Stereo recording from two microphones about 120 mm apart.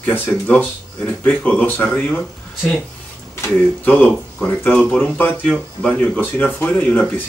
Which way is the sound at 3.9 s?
15° left (ahead or behind).